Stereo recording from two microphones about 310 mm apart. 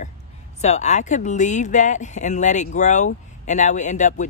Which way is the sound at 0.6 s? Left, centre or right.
Left.